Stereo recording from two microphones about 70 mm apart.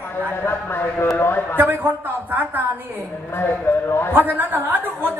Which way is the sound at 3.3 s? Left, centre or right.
Left.